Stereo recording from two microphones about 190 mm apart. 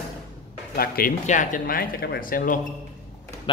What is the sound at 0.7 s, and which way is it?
Speech, 50° left (ahead or behind).